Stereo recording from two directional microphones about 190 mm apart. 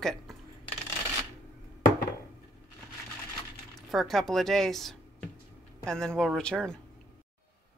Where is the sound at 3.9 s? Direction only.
Centre (ahead or behind).